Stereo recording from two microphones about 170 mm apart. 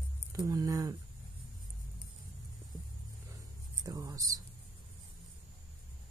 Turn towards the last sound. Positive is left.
turn(degrees=-20)  # may be behind; listen again after turning